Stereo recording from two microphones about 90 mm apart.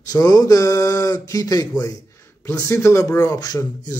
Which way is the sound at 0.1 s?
45° left (ahead or behind).